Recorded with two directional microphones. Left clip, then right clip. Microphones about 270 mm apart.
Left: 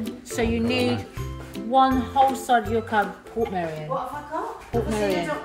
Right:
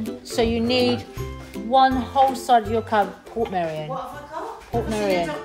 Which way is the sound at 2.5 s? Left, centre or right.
Centre.